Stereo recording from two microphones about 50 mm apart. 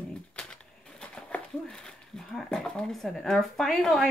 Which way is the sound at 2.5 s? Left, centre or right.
Centre.